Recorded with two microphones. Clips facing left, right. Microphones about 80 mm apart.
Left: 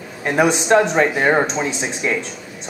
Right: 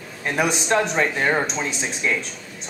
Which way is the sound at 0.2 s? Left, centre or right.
Left.